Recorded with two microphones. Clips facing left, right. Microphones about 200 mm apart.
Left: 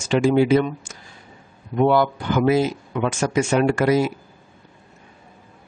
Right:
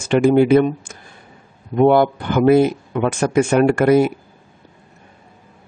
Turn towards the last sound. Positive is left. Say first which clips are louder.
# right 5 dB
turn(degrees=-55)  # may be behind; listen again after turning